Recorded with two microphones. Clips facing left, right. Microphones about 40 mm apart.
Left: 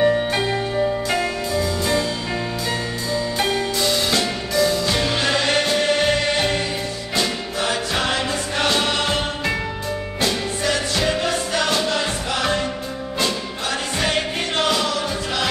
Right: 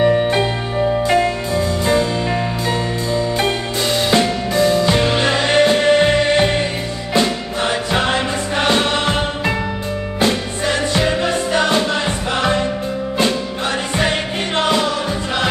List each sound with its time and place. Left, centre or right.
0.1 s music: centre
4.1 s music: right
14.6 s music: right